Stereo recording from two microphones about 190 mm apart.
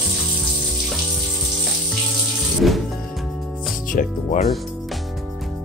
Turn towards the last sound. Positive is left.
turn(degrees=40)  # may be behind; listen again after turning